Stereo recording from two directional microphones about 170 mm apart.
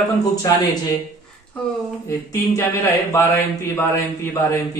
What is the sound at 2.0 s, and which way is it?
Speech, 20° left (ahead or behind).